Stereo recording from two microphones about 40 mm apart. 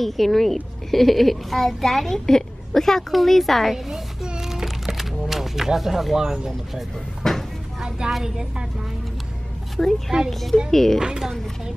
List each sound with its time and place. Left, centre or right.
0.0 s a child's voice: centre
3.7 s a child's voice: centre
4.4 s music: centre
6.1 s speech: centre
7.2 s a sound: centre
8.2 s a woman's voice: centre
9.8 s a child's voice: centre
11.0 s speech: centre